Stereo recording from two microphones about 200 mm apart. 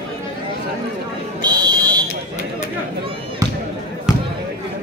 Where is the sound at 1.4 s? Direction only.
20° right (ahead or behind).